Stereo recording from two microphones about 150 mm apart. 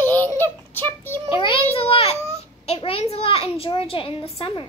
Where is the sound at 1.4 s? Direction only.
35° left (ahead or behind).